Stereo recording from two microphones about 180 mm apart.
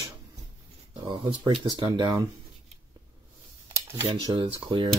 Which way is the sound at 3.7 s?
15° right (ahead or behind).